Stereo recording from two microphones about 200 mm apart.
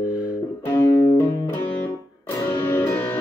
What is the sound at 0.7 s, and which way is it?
Music, 10° left (ahead or behind).